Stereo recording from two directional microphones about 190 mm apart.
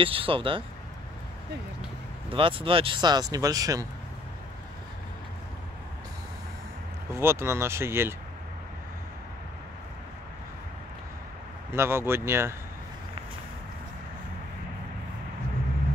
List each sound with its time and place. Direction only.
0.0 s speech: 30° right (ahead or behind)
2.3 s speech: 30° right (ahead or behind)
7.2 s speech: 15° right (ahead or behind)
11.7 s speech: 15° right (ahead or behind)